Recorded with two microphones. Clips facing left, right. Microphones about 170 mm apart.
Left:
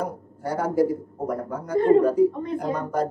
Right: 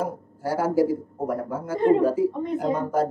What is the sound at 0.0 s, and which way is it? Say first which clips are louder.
A man's voice: right 1 dB; 5° right (ahead or behind).